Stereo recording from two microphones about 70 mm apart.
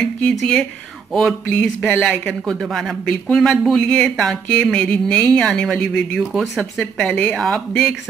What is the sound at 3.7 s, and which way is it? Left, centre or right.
Speech, centre.